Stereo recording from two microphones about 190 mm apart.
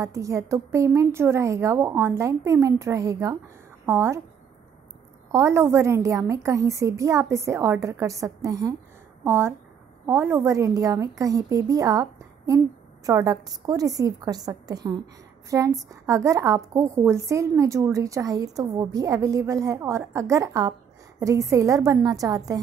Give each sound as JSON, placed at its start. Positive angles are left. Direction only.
{"t": 0.0, "sound": "a woman's voice", "side_deg": -15}
{"t": 5.3, "sound": "a woman's voice", "side_deg": -15}